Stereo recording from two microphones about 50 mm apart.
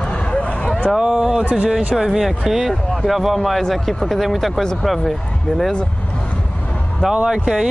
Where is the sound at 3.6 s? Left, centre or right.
Centre.